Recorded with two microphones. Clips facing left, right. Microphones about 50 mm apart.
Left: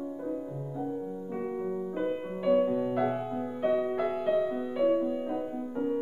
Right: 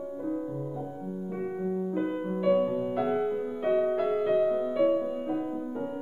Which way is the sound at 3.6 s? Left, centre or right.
Right.